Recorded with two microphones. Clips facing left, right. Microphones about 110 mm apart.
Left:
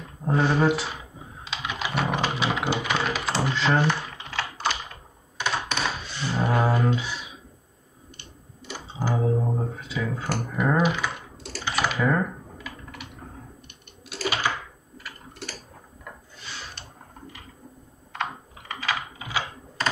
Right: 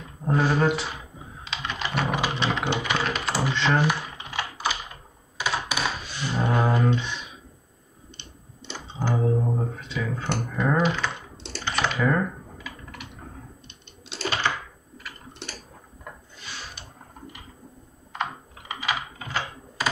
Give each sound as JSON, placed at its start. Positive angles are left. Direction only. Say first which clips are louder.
{"t": 0.2, "sound": "speech", "louder": "even", "side_deg": 0}
{"t": 1.4, "sound": "computer keyboard", "louder": "even", "side_deg": 5}
{"t": 3.8, "sound": "typing", "louder": "even", "side_deg": -15}
{"t": 5.4, "sound": "computer keyboard", "louder": "even", "side_deg": -10}
{"t": 6.3, "sound": "music", "louder": "even", "side_deg": 10}
{"t": 8.7, "sound": "computer keyboard", "louder": "even", "side_deg": 5}
{"t": 10.5, "sound": "typing", "louder": "left 1 dB", "side_deg": 5}
{"t": 11.1, "sound": "computer keyboard", "louder": "even", "side_deg": -25}
{"t": 11.6, "sound": "typing", "louder": "even", "side_deg": 5}
{"t": 13.7, "sound": "a sound", "louder": "left 1 dB", "side_deg": -25}
{"t": 14.4, "sound": "a sound", "louder": "right 1 dB", "side_deg": 10}
{"t": 18.2, "sound": "computer keyboard", "louder": "even", "side_deg": -15}
{"t": 19.1, "sound": "typing", "louder": "even", "side_deg": 10}
{"t": 19.8, "sound": "computer keyboard", "louder": "even", "side_deg": -5}